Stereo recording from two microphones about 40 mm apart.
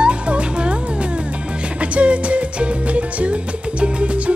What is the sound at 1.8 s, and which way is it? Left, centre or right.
Music, right.